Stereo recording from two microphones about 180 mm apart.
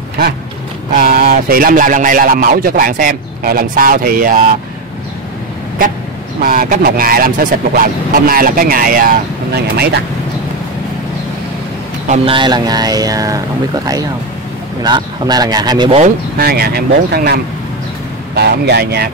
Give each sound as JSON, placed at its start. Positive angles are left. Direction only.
{"t": 0.9, "sound": "speech", "side_deg": -55}
{"t": 6.4, "sound": "speech", "side_deg": -50}
{"t": 12.1, "sound": "speech", "side_deg": -30}
{"t": 14.8, "sound": "speech", "side_deg": -25}
{"t": 16.0, "sound": "speech", "side_deg": -55}